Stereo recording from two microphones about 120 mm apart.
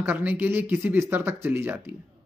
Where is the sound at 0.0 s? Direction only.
15° right (ahead or behind).